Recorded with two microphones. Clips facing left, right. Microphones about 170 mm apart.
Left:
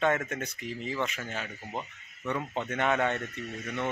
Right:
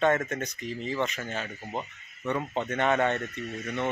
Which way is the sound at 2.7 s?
5° left (ahead or behind).